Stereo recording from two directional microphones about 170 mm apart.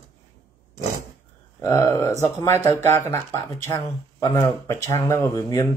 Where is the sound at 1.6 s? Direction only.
15° left (ahead or behind).